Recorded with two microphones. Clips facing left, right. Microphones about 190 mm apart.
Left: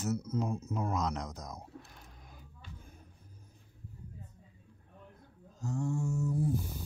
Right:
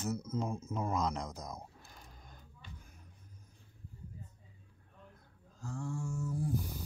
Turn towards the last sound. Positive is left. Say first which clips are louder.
# left 5 dB
turn(degrees=20)  # may be behind; listen again after turning